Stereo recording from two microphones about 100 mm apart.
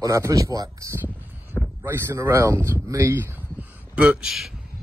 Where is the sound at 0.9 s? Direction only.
20° right (ahead or behind).